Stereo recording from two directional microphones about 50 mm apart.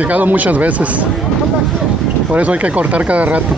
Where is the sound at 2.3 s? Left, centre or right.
Right.